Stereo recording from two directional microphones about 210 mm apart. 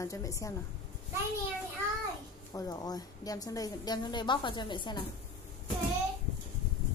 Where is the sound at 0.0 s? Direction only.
15° left (ahead or behind).